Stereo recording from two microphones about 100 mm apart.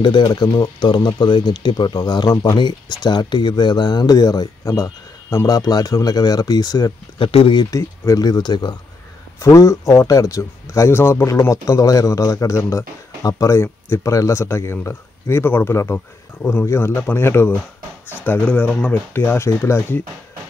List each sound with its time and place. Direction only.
0.0 s speech: 50° left (ahead or behind)
7.2 s speech: 70° left (ahead or behind)
7.7 s speech: 35° left (ahead or behind)
9.4 s speech: 30° left (ahead or behind)